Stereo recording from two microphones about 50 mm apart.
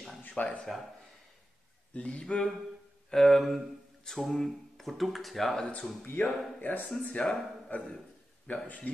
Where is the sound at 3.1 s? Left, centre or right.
Centre.